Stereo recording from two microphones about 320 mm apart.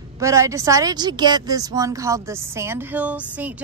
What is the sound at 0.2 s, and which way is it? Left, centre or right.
Speech, centre.